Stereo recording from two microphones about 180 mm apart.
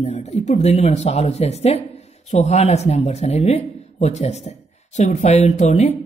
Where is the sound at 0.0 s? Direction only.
35° left (ahead or behind).